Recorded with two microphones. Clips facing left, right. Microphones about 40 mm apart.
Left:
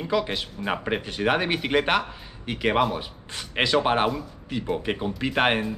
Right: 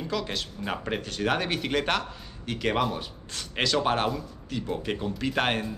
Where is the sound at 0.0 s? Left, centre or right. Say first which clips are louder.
Left 5 dB; left.